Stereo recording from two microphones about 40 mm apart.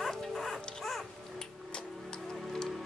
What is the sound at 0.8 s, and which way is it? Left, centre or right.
Dog, centre.